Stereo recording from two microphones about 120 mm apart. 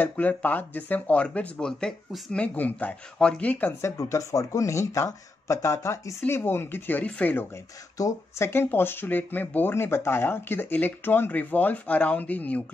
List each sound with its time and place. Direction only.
0.0 s speech: 15° left (ahead or behind)
3.9 s speech: 25° left (ahead or behind)